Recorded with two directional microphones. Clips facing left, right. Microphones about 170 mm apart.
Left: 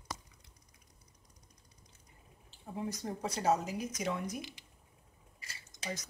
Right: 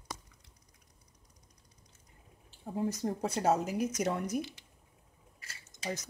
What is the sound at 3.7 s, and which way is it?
Speech, 55° right (ahead or behind).